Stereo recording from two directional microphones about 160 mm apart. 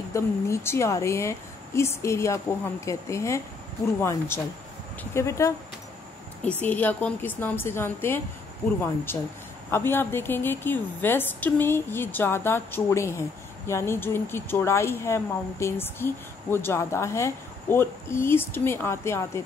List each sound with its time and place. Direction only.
0.1 s speech: 15° left (ahead or behind)
6.6 s speech: 10° left (ahead or behind)